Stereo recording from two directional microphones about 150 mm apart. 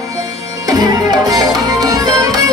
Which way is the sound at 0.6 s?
25° right (ahead or behind).